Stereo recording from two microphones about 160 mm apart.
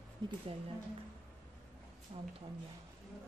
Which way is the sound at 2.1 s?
35° right (ahead or behind).